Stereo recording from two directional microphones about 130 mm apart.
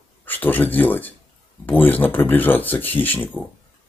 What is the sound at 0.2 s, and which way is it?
Speech, 15° left (ahead or behind).